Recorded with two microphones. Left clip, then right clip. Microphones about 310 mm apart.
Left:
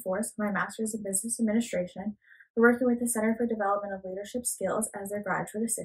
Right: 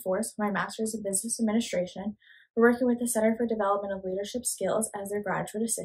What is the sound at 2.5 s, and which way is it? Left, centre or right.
Speech, centre.